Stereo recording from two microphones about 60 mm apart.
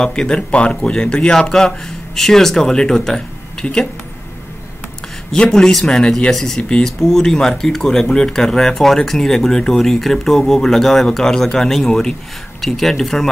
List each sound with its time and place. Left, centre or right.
0.0 s speech: centre
5.3 s speech: centre